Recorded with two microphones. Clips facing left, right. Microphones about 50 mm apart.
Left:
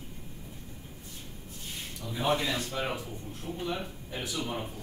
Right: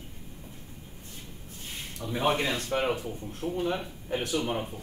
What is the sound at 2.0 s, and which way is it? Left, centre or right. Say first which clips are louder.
Speech: right 2 dB; right.